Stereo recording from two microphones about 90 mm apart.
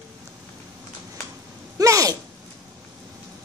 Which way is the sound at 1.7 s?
40° right (ahead or behind).